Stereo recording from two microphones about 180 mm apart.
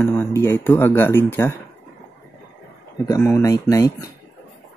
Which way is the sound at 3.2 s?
15° left (ahead or behind).